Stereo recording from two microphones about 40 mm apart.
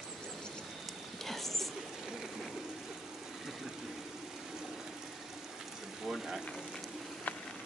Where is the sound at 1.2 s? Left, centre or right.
Centre.